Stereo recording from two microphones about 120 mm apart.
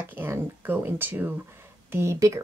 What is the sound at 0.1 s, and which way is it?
Speech, 20° right (ahead or behind).